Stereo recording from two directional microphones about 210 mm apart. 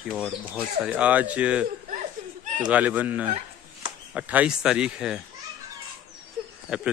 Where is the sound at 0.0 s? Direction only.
Centre (ahead or behind).